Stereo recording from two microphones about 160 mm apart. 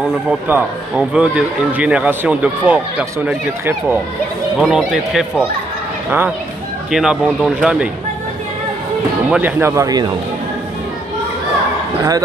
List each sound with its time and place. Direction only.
0.3 s speech: 10° right (ahead or behind)
9.3 s speech: 10° right (ahead or behind)